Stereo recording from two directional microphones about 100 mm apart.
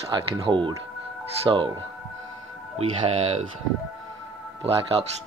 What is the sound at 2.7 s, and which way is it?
Speech, 90° right.